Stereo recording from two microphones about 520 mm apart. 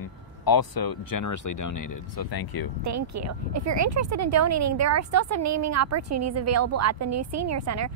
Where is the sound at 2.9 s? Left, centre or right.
Right.